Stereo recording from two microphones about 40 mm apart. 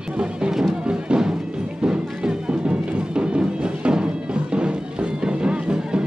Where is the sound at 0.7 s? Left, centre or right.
Right.